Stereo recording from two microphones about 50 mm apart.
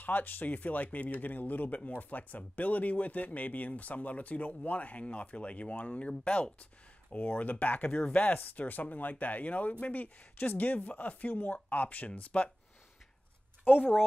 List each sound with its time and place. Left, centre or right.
0.0 s speech: left